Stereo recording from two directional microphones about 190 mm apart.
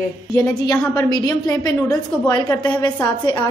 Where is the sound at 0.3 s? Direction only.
15° left (ahead or behind).